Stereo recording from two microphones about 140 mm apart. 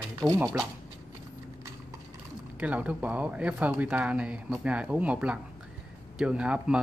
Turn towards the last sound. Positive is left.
turn(degrees=-5)  # may be behind; listen again after turning